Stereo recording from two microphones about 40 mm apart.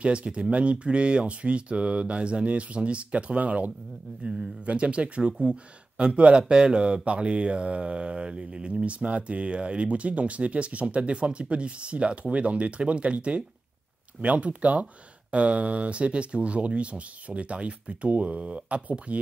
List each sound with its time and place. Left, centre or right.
0.0 s speech: right